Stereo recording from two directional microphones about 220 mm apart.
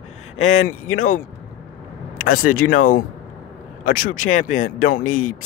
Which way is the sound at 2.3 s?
40° left (ahead or behind).